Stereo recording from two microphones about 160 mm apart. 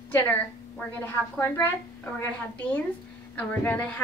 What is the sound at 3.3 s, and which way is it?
Speech, 10° left (ahead or behind).